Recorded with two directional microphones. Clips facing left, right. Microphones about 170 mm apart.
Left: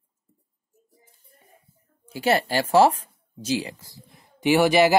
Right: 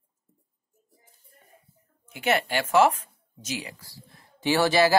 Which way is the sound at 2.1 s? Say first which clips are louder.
Left 3 dB; 35° left (ahead or behind).